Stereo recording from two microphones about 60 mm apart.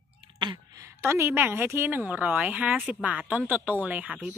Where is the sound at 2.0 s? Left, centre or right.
Right.